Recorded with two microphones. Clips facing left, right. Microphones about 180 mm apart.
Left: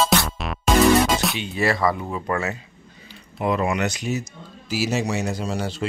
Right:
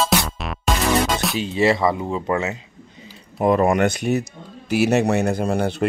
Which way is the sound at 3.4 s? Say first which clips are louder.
Right 6 dB; 45° right (ahead or behind).